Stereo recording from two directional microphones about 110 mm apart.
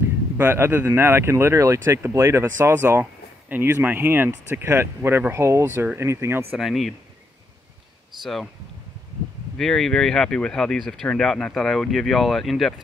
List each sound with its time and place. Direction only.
0.4 s speech: 20° right (ahead or behind)
6.6 s speech: centre (ahead or behind)
8.2 s speech: centre (ahead or behind)
9.6 s speech: 5° left (ahead or behind)